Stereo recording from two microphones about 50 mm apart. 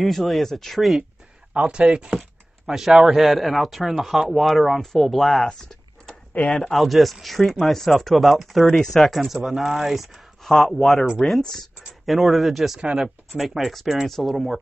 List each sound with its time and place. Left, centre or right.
0.0 s speech: centre
1.5 s speech: centre
2.6 s speech: centre
5.5 s a sound: centre
6.3 s speech: left
6.6 s speech: centre
10.4 s speech: centre
13.4 s speech: centre